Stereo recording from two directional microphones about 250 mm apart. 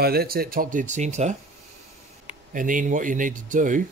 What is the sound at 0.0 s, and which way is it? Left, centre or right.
Speech, right.